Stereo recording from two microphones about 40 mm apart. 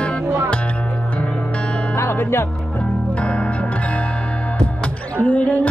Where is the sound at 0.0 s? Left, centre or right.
Left.